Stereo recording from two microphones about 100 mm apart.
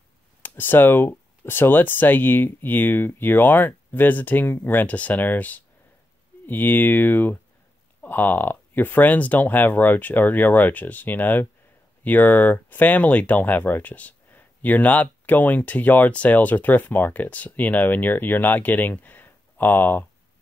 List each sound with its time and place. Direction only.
0.4 s speech: 20° left (ahead or behind)